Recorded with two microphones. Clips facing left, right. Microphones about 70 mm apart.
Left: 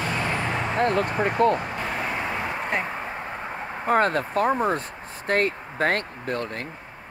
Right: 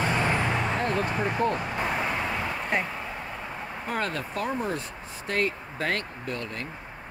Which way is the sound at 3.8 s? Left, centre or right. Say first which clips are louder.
Left 10 dB; left.